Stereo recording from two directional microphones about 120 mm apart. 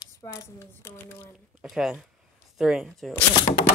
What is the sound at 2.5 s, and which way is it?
Speech, centre (ahead or behind).